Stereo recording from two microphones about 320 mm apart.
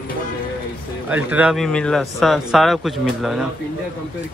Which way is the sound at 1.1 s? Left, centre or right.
Centre.